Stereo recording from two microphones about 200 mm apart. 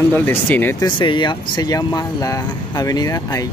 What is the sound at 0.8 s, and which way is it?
Speech, 25° left (ahead or behind).